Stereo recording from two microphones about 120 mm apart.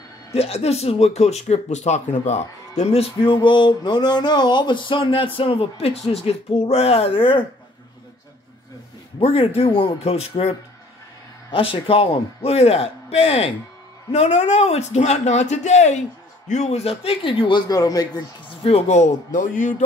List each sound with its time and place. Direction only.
0.3 s speech: 55° left (ahead or behind)
2.8 s speech: 55° left (ahead or behind)
9.2 s speech: 50° left (ahead or behind)
11.5 s speech: 50° left (ahead or behind); by 18.2 s 30° left (ahead or behind)
18.6 s speech: 60° left (ahead or behind); by 19.7 s 90° left